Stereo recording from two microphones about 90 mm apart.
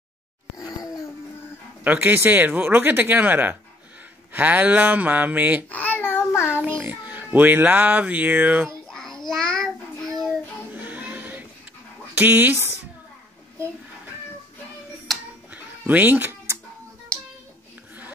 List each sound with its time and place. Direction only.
0.6 s groan: 40° left (ahead or behind)
1.9 s speech: 20° right (ahead or behind)
5.7 s child singing: 20° left (ahead or behind)
6.8 s speech: 20° right (ahead or behind)
8.6 s a sound: 5° left (ahead or behind)
9.3 s child singing: 5° left (ahead or behind)
10.7 s music: 20° right (ahead or behind)
12.2 s speech: 20° right (ahead or behind)
15.5 s cat: 20° right (ahead or behind)